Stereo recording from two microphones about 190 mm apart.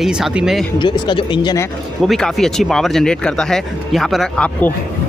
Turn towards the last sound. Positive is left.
turn(degrees=5)  # may be behind; listen again after turning